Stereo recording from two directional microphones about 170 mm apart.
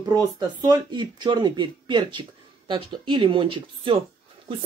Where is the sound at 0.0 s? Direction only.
20° right (ahead or behind).